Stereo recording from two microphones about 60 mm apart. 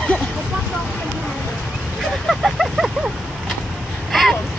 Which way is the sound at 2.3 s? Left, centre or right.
Centre.